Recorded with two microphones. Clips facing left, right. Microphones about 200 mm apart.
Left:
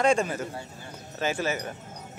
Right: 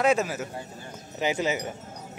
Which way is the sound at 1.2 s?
15° right (ahead or behind).